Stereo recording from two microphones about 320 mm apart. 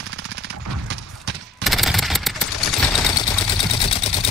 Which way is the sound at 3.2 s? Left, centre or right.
Centre.